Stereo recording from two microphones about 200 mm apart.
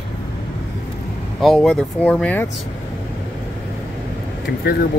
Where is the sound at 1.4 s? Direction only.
Centre (ahead or behind).